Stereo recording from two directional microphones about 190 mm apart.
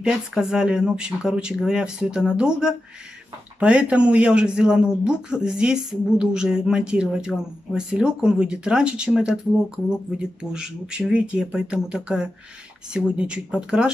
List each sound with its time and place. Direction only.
0.0 s a man's voice: 5° right (ahead or behind)